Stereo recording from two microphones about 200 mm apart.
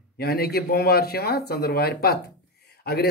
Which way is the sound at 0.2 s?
50° left (ahead or behind).